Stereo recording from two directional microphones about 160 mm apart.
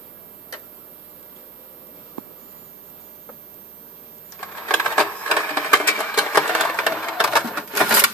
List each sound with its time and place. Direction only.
4.6 s printer: 5° left (ahead or behind)
5.8 s a sound: 5° left (ahead or behind)
6.1 s sewing machine: centre (ahead or behind)